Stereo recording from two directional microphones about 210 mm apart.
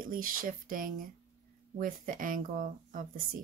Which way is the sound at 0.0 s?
40° right (ahead or behind).